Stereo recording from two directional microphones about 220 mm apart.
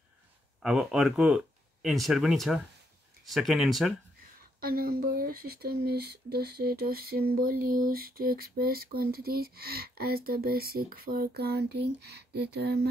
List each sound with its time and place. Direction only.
0.6 s speech: centre (ahead or behind)
4.6 s speech: 45° right (ahead or behind)